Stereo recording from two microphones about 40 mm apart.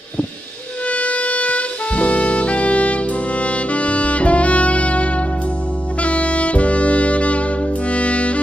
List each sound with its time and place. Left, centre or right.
0.8 s music: left
6.0 s saxophone: left
7.9 s music: left